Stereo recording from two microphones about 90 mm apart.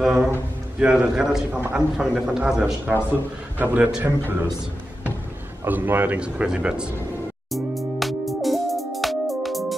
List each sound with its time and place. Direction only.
0.7 s speech: 10° right (ahead or behind)
1.5 s speech: 20° right (ahead or behind)
2.0 s a man's voice: 5° right (ahead or behind)
2.9 s a man's voice: 20° right (ahead or behind)
5.7 s speech: 20° right (ahead or behind)
7.5 s music: centre (ahead or behind)